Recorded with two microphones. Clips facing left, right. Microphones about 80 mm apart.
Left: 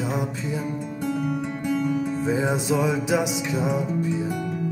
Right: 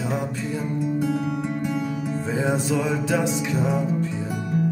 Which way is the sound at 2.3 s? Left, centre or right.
Centre.